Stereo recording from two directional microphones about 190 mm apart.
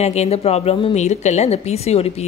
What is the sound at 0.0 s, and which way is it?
A woman's voice, 35° left (ahead or behind).